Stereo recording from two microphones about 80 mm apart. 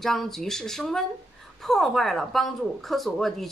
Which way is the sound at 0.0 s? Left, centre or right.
Centre.